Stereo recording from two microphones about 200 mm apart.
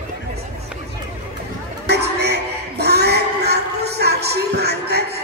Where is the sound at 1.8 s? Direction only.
55° right (ahead or behind).